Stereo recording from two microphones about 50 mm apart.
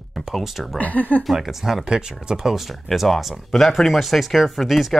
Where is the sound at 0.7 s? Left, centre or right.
Left.